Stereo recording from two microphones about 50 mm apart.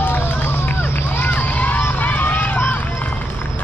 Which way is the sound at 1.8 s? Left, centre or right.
Left.